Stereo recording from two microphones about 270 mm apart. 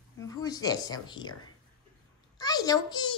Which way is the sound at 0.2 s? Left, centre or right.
Centre.